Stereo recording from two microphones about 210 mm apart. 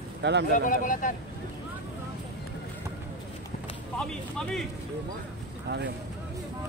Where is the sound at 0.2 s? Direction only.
55° right (ahead or behind).